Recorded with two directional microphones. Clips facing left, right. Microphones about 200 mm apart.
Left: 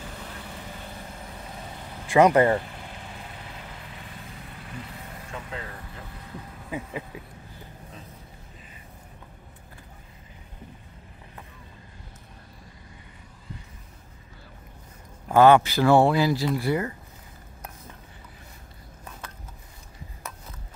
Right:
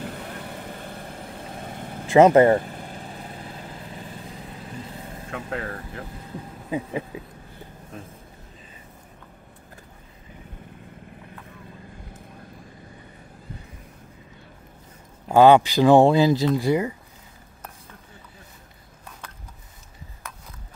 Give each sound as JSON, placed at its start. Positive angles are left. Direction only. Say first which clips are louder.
{"t": 0.0, "sound": "vehicle", "louder": "right 6 dB", "side_deg": -55}
{"t": 2.0, "sound": "speech", "louder": "right 4 dB", "side_deg": -25}
{"t": 2.5, "sound": "vehicle", "louder": "right 5 dB", "side_deg": -45}
{"t": 5.3, "sound": "speech", "louder": "right 7 dB", "side_deg": -65}
{"t": 6.7, "sound": "speech", "louder": "right 6 dB", "side_deg": -25}
{"t": 15.2, "sound": "speech", "louder": "right 2 dB", "side_deg": -15}